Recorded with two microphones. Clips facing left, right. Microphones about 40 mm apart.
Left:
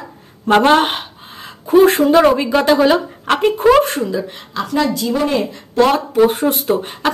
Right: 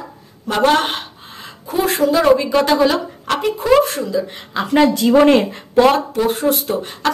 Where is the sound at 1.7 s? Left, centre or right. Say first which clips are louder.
Left 9 dB; left.